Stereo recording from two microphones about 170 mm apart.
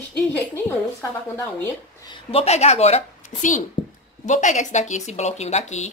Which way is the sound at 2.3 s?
35° left (ahead or behind).